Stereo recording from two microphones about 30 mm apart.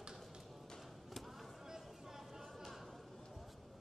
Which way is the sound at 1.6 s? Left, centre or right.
Centre.